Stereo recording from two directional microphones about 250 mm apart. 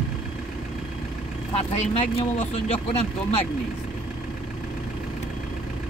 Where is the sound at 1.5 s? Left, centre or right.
Left.